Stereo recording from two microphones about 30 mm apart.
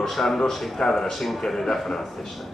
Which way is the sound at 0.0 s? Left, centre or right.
Centre.